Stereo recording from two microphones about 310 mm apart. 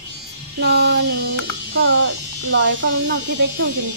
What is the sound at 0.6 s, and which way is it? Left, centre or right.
Speech, right.